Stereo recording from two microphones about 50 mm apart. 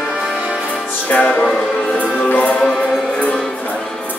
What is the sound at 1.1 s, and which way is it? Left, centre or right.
Music, left.